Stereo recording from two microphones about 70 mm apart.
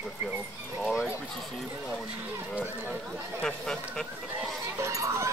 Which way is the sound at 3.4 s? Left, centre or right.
Centre.